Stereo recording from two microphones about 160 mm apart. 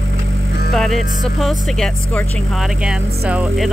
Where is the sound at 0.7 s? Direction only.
Centre (ahead or behind).